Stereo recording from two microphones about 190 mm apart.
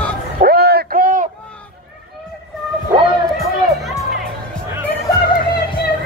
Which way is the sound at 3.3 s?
Centre (ahead or behind).